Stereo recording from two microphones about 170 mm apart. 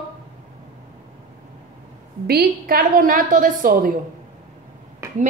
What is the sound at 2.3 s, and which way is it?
A woman's voice, 65° right (ahead or behind).